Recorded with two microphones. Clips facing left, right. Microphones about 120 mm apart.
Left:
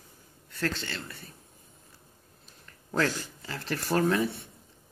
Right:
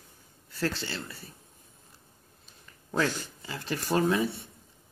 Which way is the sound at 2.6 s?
10° right (ahead or behind).